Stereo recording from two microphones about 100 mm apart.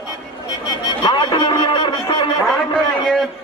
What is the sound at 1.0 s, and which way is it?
Speech, 50° left (ahead or behind).